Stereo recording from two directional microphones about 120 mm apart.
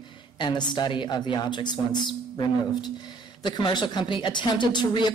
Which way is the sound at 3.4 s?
40° left (ahead or behind).